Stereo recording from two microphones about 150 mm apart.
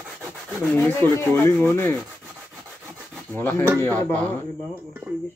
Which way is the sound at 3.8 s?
10° left (ahead or behind).